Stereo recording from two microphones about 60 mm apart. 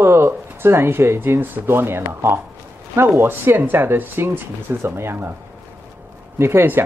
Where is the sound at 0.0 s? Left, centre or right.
Right.